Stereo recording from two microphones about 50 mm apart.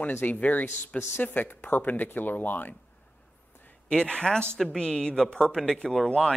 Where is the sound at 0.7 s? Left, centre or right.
Left.